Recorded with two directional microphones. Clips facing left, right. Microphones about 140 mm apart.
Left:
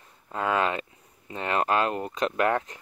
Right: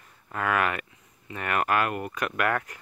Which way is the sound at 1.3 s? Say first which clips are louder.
Left 1 dB; 25° left (ahead or behind).